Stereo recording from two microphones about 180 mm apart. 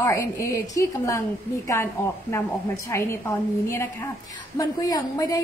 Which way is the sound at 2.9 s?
15° left (ahead or behind).